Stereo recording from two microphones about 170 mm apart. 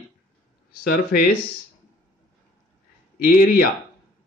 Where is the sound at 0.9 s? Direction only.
55° left (ahead or behind).